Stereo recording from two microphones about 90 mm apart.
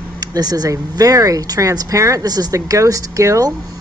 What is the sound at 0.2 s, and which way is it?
Speech, 45° right (ahead or behind).